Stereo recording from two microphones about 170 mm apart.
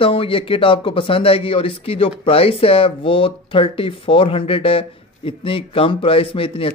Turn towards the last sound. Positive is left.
turn(degrees=30)  # may be behind; listen again after turning